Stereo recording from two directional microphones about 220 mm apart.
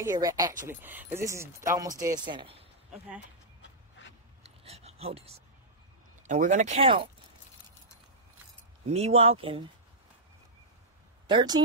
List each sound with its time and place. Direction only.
0.0 s speech: 15° right (ahead or behind)
4.0 s a sound: 55° left (ahead or behind)
4.4 s a sound: 30° right (ahead or behind)
6.2 s speech: 35° right (ahead or behind)
8.9 s speech: 30° right (ahead or behind)
11.2 s speech: 20° right (ahead or behind)